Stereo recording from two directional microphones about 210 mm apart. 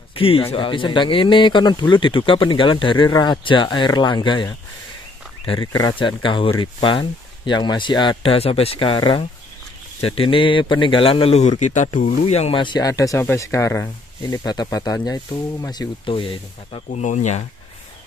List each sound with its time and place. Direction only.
0.1 s speech: 25° left (ahead or behind)